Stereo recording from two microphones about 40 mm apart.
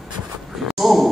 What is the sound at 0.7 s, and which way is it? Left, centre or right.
Speech, centre.